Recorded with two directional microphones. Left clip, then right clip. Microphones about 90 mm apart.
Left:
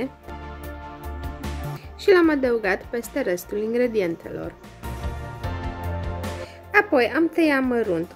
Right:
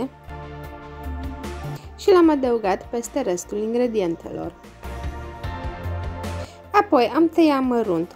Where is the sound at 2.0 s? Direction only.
35° right (ahead or behind).